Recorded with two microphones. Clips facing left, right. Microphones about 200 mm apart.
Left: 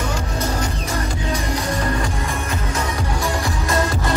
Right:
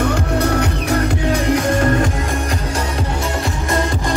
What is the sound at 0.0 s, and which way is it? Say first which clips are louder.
Music: right 7 dB; 65° right (ahead or behind).